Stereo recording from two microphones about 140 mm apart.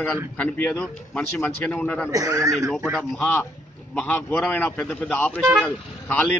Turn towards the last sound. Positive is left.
turn(degrees=10)  # may be behind; listen again after turning